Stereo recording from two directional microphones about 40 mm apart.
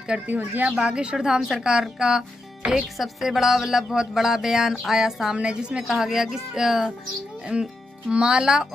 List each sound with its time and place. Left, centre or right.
0.1 s speech: centre
3.0 s speech: centre
5.3 s speech: right
5.9 s speech: centre
7.5 s speech: right